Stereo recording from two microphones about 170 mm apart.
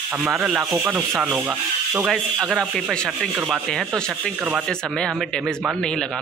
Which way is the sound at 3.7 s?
Centre (ahead or behind).